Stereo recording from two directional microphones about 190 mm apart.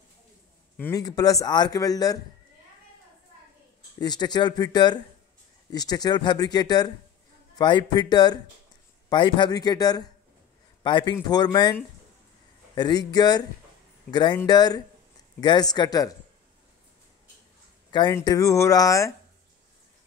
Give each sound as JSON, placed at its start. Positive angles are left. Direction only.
{"t": 0.7, "sound": "speech", "side_deg": 15}
{"t": 4.0, "sound": "a man's voice", "side_deg": 20}
{"t": 17.9, "sound": "speech", "side_deg": 20}